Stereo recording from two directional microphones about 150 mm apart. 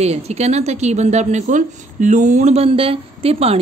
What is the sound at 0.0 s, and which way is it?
A woman's voice, 45° right (ahead or behind).